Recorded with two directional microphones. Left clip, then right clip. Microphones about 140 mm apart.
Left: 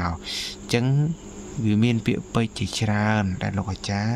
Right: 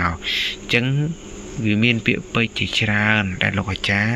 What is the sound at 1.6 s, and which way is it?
Speech, 45° left (ahead or behind).